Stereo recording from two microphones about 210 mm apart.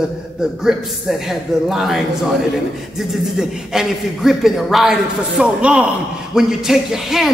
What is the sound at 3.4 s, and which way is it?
A man's voice, centre (ahead or behind).